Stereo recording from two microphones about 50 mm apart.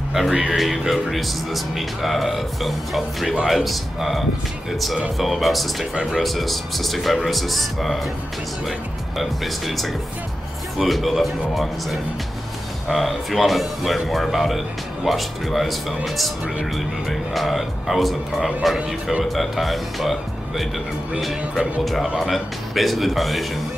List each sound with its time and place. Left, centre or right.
0.3 s speech: centre
0.6 s speech: centre